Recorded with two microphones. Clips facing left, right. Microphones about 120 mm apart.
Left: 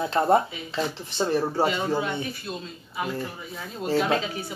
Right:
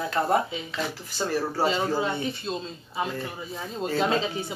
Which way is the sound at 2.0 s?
25° right (ahead or behind).